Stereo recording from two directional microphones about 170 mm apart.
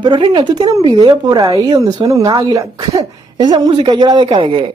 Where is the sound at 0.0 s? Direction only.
30° right (ahead or behind).